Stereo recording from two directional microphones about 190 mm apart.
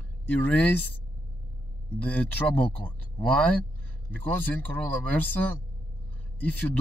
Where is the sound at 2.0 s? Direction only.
10° left (ahead or behind).